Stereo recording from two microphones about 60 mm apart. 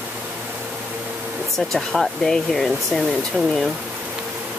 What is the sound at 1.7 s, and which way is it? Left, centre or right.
Speech, centre.